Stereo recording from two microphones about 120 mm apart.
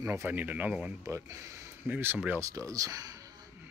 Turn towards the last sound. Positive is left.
turn(degrees=-30)  # may be behind; listen again after turning